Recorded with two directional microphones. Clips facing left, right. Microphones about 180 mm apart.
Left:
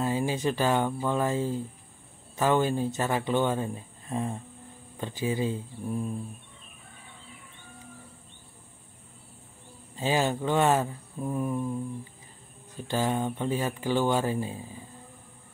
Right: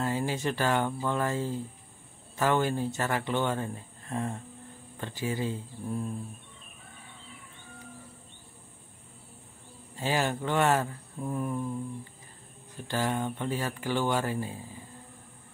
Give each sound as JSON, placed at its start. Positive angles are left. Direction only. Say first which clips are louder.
{"t": 0.0, "sound": "speech", "louder": "left 3 dB", "side_deg": 15}
{"t": 9.9, "sound": "speech", "louder": "left 3 dB", "side_deg": 15}
{"t": 12.8, "sound": "speech", "louder": "left 2 dB", "side_deg": 15}